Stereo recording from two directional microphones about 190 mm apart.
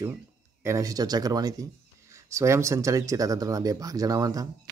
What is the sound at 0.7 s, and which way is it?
Speech, 20° right (ahead or behind).